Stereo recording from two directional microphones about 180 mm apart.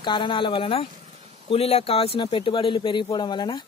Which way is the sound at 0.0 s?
25° left (ahead or behind).